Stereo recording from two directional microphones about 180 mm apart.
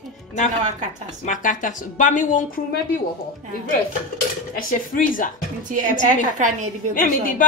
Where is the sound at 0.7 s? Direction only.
40° right (ahead or behind).